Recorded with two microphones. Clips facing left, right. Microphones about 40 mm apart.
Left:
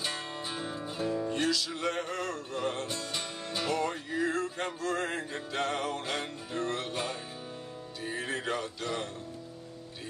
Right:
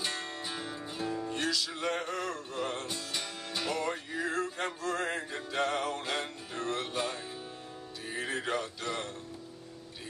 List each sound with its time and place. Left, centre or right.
0.0 s music: centre